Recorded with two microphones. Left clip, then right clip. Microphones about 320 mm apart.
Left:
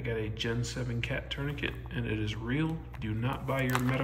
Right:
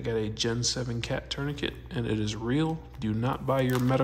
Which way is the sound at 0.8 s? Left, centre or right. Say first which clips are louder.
Right 3 dB; right.